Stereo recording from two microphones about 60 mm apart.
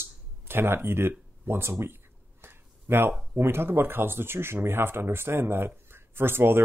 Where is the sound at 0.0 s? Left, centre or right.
Right.